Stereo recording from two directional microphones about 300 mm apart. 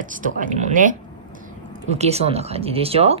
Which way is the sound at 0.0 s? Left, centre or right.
Right.